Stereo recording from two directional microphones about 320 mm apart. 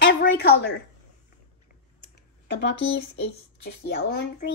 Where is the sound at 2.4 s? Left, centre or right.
Left.